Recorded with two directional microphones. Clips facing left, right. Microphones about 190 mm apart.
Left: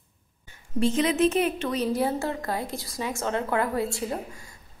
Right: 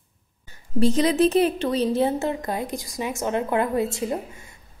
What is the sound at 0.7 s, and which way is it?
A woman's voice, 35° right (ahead or behind).